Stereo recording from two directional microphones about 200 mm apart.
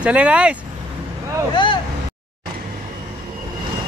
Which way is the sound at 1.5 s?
25° left (ahead or behind).